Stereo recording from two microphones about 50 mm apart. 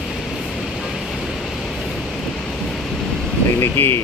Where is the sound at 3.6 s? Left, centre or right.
Left.